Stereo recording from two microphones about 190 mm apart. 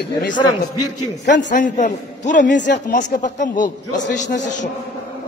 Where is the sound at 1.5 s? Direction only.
40° left (ahead or behind).